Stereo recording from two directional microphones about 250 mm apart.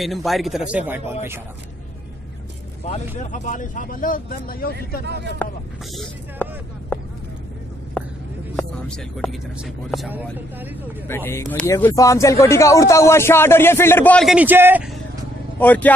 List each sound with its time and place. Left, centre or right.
0.0 s speech: centre
3.2 s speech: left
5.4 s speech: centre
8.0 s a sound: centre
8.5 s speech: centre
11.1 s speech: centre
15.6 s speech: centre